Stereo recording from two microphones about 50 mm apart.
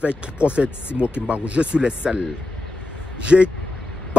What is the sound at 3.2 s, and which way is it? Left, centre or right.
Speech, right.